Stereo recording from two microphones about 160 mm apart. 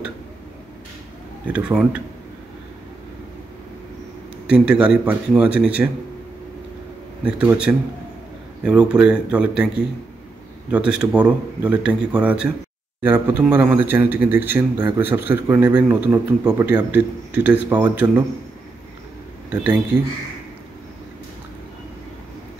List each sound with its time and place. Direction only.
1.5 s a man's voice: 5° right (ahead or behind)
4.5 s a man's voice: 5° right (ahead or behind)
7.2 s a man's voice: 5° right (ahead or behind)
16.9 s a man's voice: 10° right (ahead or behind)
19.5 s a man's voice: 10° right (ahead or behind)